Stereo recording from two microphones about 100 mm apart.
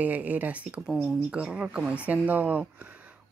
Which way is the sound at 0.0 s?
15° right (ahead or behind).